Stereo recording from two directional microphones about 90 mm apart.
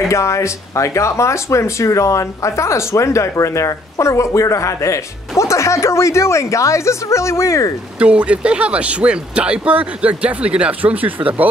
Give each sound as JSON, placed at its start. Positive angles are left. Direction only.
{"t": 0.1, "sound": "speech", "side_deg": 35}
{"t": 8.0, "sound": "speech", "side_deg": -15}